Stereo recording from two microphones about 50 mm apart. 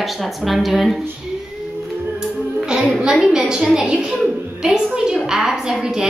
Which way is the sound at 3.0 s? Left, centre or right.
Centre.